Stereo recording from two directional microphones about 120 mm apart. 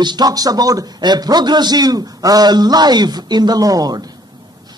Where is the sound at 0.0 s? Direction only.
35° right (ahead or behind).